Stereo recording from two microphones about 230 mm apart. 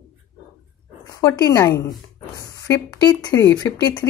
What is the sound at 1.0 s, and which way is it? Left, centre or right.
Speech, centre.